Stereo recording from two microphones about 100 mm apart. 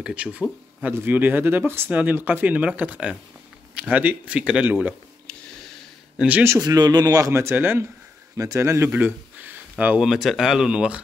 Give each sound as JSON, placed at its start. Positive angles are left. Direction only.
{"t": 0.0, "sound": "speech", "side_deg": -10}
{"t": 6.1, "sound": "speech", "side_deg": -15}
{"t": 6.4, "sound": "a man's voice", "side_deg": -35}
{"t": 10.0, "sound": "speech", "side_deg": 0}